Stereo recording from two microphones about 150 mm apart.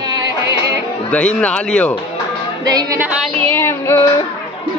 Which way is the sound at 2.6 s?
25° right (ahead or behind).